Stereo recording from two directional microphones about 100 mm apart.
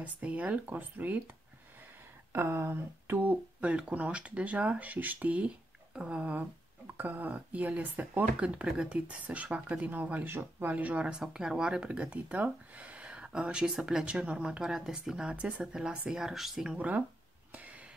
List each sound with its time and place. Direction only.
0.0 s speech: 15° right (ahead or behind)
2.3 s speech: 25° right (ahead or behind)
17.5 s a sound: 15° right (ahead or behind)